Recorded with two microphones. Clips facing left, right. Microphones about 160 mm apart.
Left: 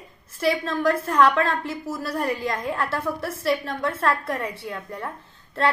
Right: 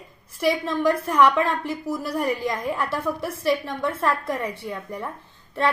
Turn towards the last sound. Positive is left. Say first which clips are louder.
# even
turn(degrees=-15)  # may be behind; listen again after turning